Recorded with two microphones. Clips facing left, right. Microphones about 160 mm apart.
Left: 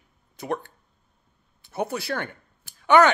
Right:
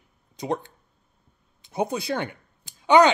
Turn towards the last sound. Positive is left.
turn(degrees=-15)  # may be behind; listen again after turning